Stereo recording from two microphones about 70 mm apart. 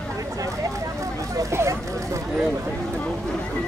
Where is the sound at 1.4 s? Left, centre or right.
Right.